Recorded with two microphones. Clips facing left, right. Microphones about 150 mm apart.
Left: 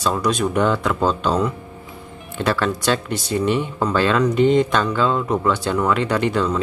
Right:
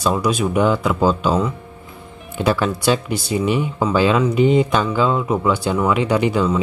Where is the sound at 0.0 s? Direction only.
10° right (ahead or behind).